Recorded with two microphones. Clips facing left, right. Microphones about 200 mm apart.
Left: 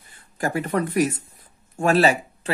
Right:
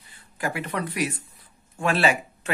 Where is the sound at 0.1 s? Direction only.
45° left (ahead or behind).